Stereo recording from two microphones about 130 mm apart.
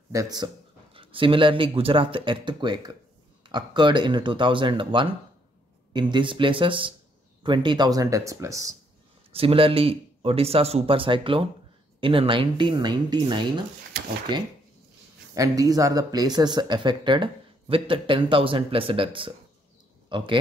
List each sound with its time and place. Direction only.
0.1 s speech: 30° right (ahead or behind)
0.9 s speech: 40° right (ahead or behind); by 8.7 s 25° right (ahead or behind)
9.3 s speech: 45° right (ahead or behind)
15.3 s speech: 25° right (ahead or behind)